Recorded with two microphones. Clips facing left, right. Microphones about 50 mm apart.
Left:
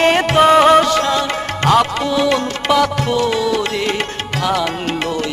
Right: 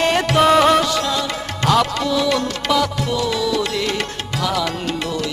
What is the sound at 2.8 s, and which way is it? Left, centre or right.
Music, left.